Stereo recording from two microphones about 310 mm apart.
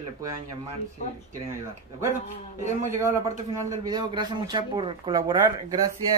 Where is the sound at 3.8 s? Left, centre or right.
Centre.